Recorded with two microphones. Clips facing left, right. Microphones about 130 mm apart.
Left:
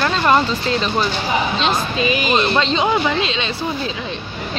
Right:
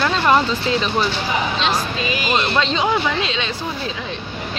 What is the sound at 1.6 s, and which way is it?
Speech, 20° left (ahead or behind).